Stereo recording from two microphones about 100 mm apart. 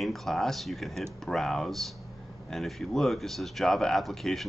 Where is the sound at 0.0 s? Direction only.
Centre (ahead or behind).